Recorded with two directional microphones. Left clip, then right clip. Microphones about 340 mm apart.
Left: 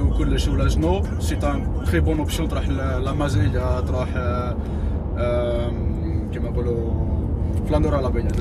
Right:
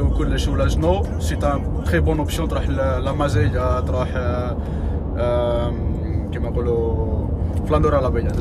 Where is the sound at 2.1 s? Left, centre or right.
Right.